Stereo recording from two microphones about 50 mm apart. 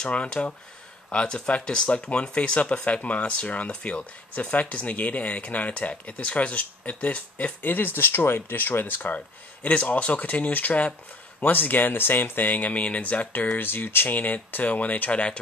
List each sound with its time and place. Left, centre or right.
0.0 s speech: centre
7.6 s speech: left